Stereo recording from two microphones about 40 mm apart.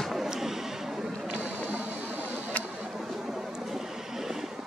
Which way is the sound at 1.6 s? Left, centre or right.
Right.